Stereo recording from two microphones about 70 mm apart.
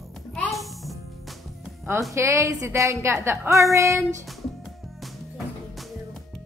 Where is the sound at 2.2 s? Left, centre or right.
Right.